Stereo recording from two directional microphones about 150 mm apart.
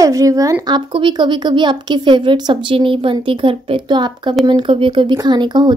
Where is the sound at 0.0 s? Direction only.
20° right (ahead or behind).